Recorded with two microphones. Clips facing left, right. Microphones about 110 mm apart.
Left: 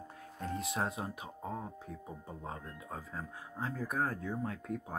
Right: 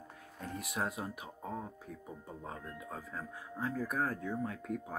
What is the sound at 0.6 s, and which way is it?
Speech, 30° left (ahead or behind).